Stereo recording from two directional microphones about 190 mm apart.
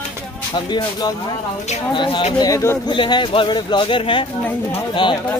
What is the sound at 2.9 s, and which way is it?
A man's voice, 25° left (ahead or behind).